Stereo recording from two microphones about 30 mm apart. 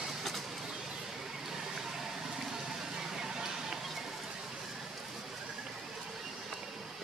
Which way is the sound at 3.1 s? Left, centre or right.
Centre.